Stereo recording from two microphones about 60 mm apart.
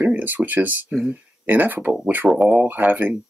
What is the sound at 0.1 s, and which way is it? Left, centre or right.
Speech, right.